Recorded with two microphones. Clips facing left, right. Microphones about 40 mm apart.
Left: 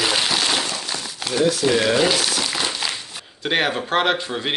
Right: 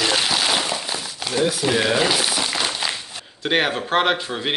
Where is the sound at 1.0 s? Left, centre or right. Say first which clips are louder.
Left 3 dB; centre.